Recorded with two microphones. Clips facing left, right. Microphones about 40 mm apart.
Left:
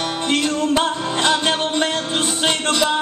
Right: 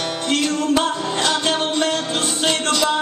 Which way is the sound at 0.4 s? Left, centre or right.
Centre.